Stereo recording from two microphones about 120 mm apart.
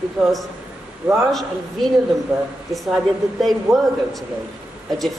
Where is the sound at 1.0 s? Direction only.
15° right (ahead or behind).